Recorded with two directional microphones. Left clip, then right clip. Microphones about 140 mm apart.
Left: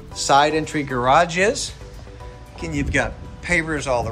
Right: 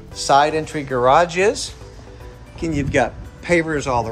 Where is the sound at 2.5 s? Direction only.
25° right (ahead or behind).